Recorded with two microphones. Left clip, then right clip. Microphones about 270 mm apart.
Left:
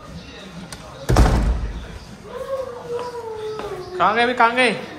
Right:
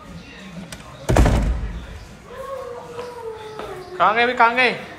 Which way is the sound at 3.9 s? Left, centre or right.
Centre.